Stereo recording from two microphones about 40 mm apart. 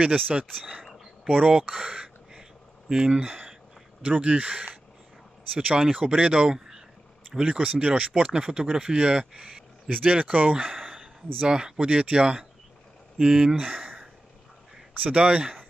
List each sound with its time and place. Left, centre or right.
0.0 s speech: right
1.5 s a sound: right
2.9 s speech: right
6.0 s speech: right
8.3 s speech: centre
9.8 s speech: right
11.4 s speech: centre
15.0 s speech: right